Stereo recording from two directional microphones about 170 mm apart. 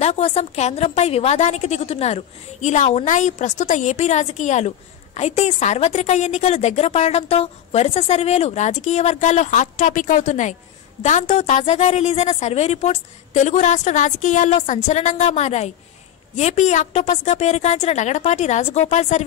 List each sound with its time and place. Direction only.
0.0 s a woman's voice: 35° left (ahead or behind)